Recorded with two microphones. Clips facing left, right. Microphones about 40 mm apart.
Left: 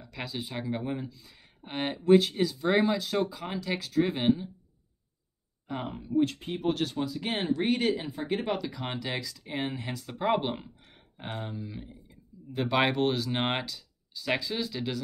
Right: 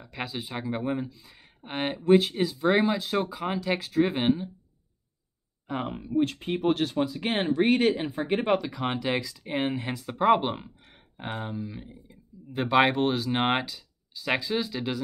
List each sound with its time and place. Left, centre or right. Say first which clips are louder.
0.0 s speech: right 2 dB; centre
5.7 s speech: right 3 dB; right